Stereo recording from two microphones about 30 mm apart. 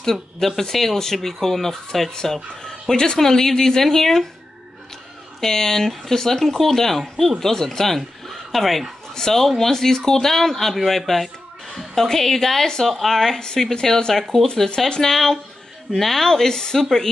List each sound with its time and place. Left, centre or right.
0.0 s speech: centre
5.4 s speech: centre
9.1 s a woman's voice: centre
13.4 s speech: left